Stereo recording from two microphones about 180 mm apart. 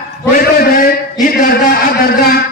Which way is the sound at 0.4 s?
55° left (ahead or behind).